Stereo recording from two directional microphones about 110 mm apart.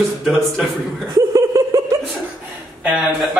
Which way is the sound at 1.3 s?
30° right (ahead or behind).